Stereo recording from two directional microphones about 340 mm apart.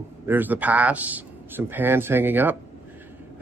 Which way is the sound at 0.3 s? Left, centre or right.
Centre.